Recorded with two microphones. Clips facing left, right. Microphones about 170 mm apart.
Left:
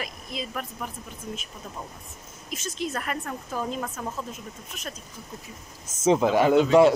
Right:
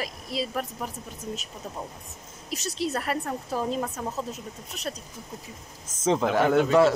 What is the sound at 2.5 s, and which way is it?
A woman's voice, 35° right (ahead or behind).